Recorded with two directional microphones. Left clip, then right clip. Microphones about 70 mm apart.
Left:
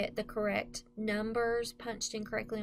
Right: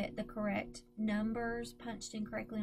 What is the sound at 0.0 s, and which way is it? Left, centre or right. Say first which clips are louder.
Speech: left 6 dB; left.